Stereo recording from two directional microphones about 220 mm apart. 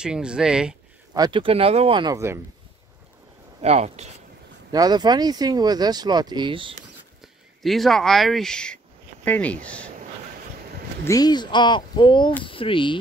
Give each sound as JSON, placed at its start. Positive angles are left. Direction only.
{"t": 0.0, "sound": "speech", "side_deg": -5}
{"t": 1.1, "sound": "speech", "side_deg": -20}
{"t": 3.6, "sound": "speech", "side_deg": -30}
{"t": 4.7, "sound": "speech", "side_deg": -20}
{"t": 7.6, "sound": "speech", "side_deg": 0}
{"t": 11.1, "sound": "speech", "side_deg": 15}